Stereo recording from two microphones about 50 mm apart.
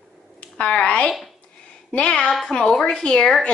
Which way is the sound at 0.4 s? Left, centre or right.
Left.